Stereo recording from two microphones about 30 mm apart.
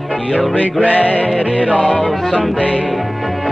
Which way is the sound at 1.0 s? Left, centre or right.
Left.